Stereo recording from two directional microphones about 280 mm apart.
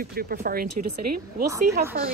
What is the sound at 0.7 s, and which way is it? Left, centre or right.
Speech, right.